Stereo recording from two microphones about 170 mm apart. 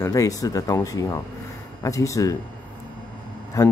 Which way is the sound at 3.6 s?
20° left (ahead or behind).